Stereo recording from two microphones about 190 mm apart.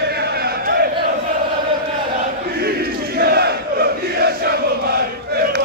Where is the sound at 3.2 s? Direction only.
55° right (ahead or behind).